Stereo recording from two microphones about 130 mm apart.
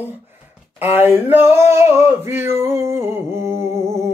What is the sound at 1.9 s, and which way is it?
Male singing, 20° right (ahead or behind).